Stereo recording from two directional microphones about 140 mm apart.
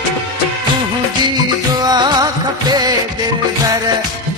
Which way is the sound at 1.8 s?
30° right (ahead or behind).